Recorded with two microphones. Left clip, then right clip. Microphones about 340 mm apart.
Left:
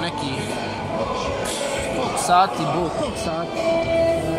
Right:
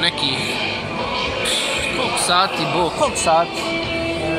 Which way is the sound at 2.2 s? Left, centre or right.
Centre.